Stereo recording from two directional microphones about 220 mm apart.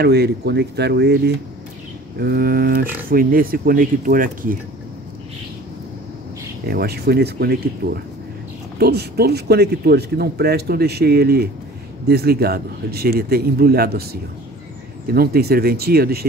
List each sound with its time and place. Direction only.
0.0 s a man's voice: 45° right (ahead or behind)
6.7 s a man's voice: 45° right (ahead or behind)
15.1 s a man's voice: 45° right (ahead or behind)